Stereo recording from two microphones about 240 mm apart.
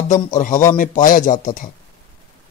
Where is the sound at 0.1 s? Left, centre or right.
Left.